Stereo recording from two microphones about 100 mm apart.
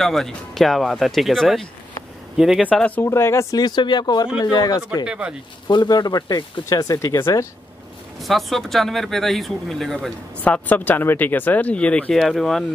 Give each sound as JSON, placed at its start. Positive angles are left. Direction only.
{"t": 0.0, "sound": "speech", "side_deg": 5}
{"t": 2.3, "sound": "speech", "side_deg": -5}
{"t": 2.7, "sound": "speech", "side_deg": 15}
{"t": 3.1, "sound": "speech", "side_deg": 25}
{"t": 3.5, "sound": "speech", "side_deg": 45}
{"t": 5.0, "sound": "speech", "side_deg": -10}
{"t": 5.7, "sound": "speech", "side_deg": 45}
{"t": 7.2, "sound": "speech", "side_deg": 25}
{"t": 8.2, "sound": "speech", "side_deg": 0}
{"t": 10.4, "sound": "speech", "side_deg": 15}